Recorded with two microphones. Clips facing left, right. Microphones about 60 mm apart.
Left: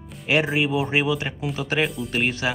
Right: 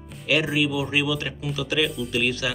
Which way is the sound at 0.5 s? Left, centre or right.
Left.